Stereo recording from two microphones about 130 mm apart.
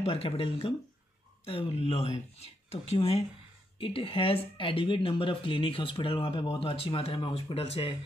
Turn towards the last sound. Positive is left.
turn(degrees=45)  # may be behind; listen again after turning